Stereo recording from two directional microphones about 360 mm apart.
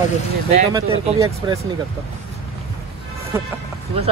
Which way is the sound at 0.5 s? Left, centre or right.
Centre.